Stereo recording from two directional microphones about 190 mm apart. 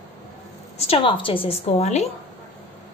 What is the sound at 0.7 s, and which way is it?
A woman's voice, 30° left (ahead or behind).